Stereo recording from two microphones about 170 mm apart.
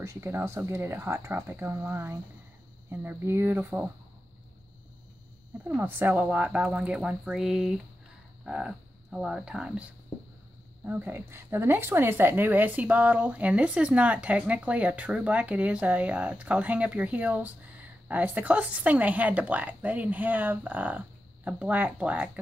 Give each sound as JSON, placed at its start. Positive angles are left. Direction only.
{"t": 0.0, "sound": "speech", "side_deg": -15}
{"t": 5.6, "sound": "speech", "side_deg": -10}
{"t": 10.9, "sound": "speech", "side_deg": -10}